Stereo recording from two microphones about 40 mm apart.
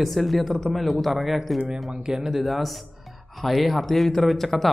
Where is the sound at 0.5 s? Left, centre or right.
Centre.